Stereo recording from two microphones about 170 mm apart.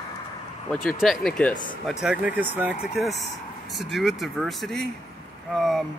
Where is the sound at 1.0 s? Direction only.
Centre (ahead or behind).